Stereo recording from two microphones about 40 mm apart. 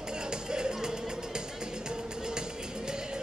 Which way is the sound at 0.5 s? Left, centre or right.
Centre.